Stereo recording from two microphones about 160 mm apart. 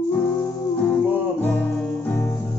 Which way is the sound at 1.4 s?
10° left (ahead or behind).